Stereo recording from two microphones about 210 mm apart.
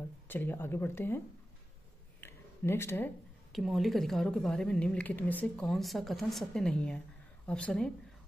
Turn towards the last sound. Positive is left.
turn(degrees=5)  # may be behind; listen again after turning